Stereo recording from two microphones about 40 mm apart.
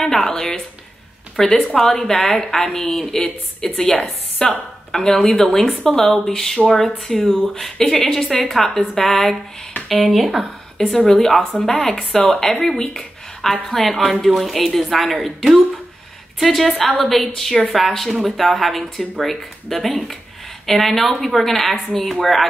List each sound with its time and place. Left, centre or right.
0.0 s speech: centre
1.3 s a woman's voice: centre
3.7 s a woman's voice: left; by 10.5 s centre
10.8 s a woman's voice: centre